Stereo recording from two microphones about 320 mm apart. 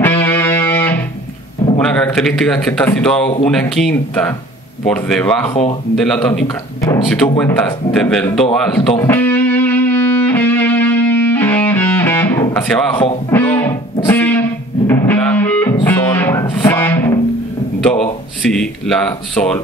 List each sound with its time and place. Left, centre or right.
0.0 s music: centre
1.8 s a man's voice: centre
5.5 s speech: centre
5.9 s speech: centre
8.9 s music: centre
17.7 s a sound: centre
18.4 s speech: centre